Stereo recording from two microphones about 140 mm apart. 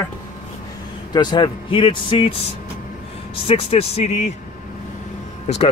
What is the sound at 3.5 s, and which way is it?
Speech, 40° left (ahead or behind).